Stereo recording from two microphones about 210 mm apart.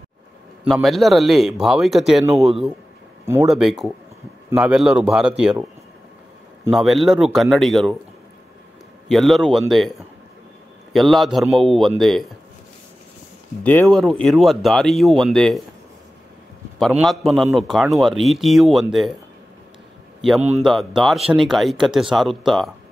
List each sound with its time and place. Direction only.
0.7 s speech: centre (ahead or behind)
6.7 s speech: centre (ahead or behind)
9.1 s speech: centre (ahead or behind)
13.7 s speech: 5° left (ahead or behind)
16.8 s speech: centre (ahead or behind)
20.3 s a man's voice: 30° right (ahead or behind)
20.6 s speech: centre (ahead or behind)